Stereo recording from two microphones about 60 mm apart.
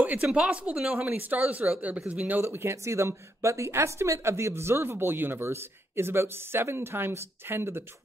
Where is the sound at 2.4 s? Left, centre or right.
Right.